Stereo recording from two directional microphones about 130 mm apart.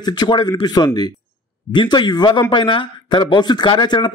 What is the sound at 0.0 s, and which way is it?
Speech, 35° left (ahead or behind).